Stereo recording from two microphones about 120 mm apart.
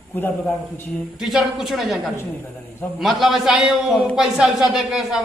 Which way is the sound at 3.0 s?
Centre (ahead or behind).